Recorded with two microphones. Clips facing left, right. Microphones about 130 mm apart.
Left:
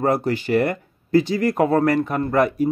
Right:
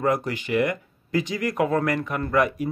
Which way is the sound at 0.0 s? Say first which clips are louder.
Left 4 dB; 35° left (ahead or behind).